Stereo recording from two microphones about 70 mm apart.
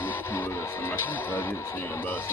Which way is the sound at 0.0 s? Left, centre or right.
Left.